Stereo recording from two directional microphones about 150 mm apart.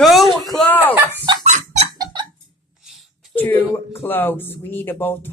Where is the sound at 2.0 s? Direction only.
30° right (ahead or behind).